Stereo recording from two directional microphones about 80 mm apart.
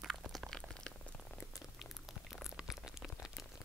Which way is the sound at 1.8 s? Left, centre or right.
Centre.